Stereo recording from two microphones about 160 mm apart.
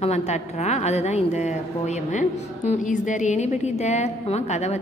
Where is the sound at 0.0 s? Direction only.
45° left (ahead or behind).